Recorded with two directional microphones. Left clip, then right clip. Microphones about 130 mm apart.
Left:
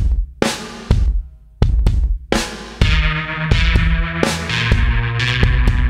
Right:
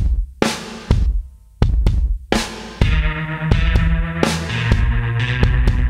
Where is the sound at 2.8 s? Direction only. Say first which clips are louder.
Left 5 dB; 40° left (ahead or behind).